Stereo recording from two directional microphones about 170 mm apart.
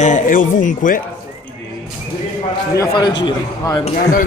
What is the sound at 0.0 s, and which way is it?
Speech, 50° left (ahead or behind).